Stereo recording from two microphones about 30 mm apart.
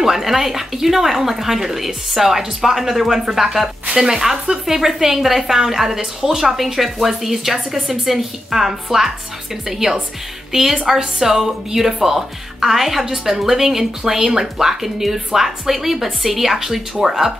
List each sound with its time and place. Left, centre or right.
0.1 s a woman's voice: centre